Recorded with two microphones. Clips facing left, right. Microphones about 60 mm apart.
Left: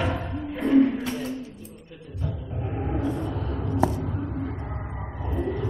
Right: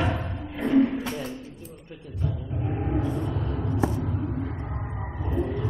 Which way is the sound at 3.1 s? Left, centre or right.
Centre.